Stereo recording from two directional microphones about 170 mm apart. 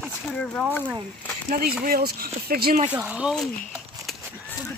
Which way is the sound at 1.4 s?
60° right (ahead or behind).